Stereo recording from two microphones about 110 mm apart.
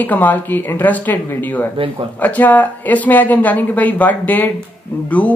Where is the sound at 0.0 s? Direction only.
15° left (ahead or behind).